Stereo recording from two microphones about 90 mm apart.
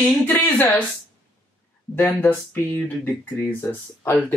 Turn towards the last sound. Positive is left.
turn(degrees=20)  # may be behind; listen again after turning